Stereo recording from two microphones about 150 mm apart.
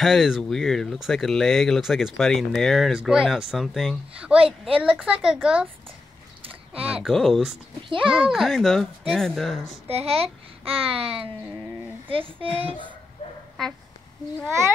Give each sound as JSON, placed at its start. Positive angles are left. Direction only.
{"t": 0.0, "sound": "speech", "side_deg": 0}
{"t": 4.4, "sound": "a child's voice", "side_deg": -40}
{"t": 4.7, "sound": "a woman's voice", "side_deg": -10}
{"t": 6.4, "sound": "a sound", "side_deg": -40}
{"t": 7.0, "sound": "speech", "side_deg": 0}
{"t": 9.8, "sound": "a child's voice", "side_deg": -45}
{"t": 13.6, "sound": "speech", "side_deg": 0}